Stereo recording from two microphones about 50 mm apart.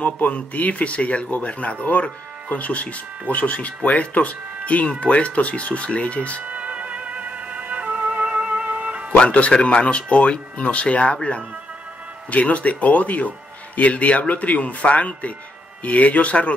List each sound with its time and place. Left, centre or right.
0.0 s speech: left
6.4 s music: right
9.1 s speech: left